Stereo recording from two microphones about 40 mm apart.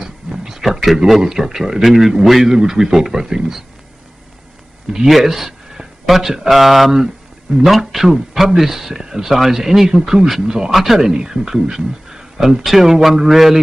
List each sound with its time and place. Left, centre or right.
0.0 s a sound: centre
0.9 s speech: centre
2.5 s speech: centre
4.9 s speech: centre
10.4 s speech: centre
10.7 s speech: centre